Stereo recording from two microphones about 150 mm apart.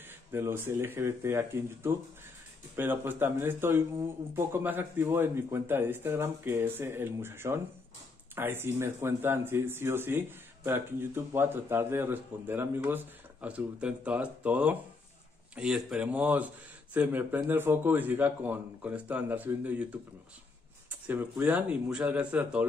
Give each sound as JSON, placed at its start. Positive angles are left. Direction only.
{"t": 0.3, "sound": "speech", "side_deg": -15}
{"t": 21.1, "sound": "speech", "side_deg": -10}